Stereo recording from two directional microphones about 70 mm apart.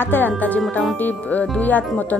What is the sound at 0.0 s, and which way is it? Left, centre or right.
A woman's voice, left.